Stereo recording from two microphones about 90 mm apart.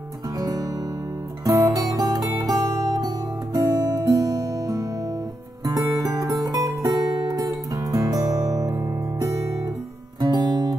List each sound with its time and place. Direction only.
1.4 s music: 40° right (ahead or behind)
10.2 s guitar: 50° right (ahead or behind)